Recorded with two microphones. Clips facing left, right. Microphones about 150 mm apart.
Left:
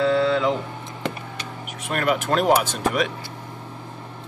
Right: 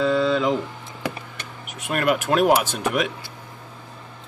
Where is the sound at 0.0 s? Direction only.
15° right (ahead or behind).